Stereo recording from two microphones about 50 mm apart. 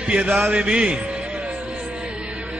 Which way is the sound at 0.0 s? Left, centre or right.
Right.